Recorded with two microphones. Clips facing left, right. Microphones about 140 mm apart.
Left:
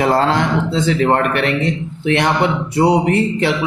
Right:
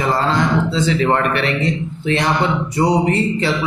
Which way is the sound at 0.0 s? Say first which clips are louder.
Left 3 dB; 65° left (ahead or behind).